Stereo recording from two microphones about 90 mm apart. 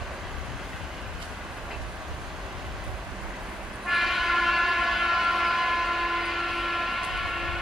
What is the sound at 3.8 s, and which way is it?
Train, centre (ahead or behind).